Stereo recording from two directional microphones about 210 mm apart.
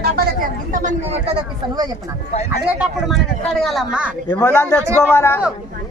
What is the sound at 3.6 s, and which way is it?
Speech, centre (ahead or behind).